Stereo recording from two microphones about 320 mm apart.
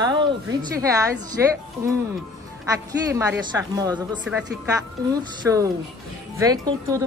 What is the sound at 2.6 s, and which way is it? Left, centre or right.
A woman's voice, centre.